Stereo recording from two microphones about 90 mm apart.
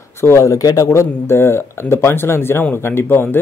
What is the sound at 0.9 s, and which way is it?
Speech, 30° left (ahead or behind).